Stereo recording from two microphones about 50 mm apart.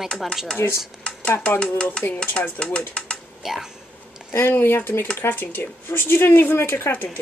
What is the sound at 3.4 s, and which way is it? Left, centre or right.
Speech, centre.